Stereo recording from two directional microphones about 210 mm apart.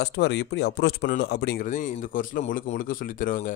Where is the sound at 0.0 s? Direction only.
55° left (ahead or behind).